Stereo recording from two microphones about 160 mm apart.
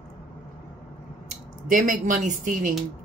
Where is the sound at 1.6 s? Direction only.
50° right (ahead or behind).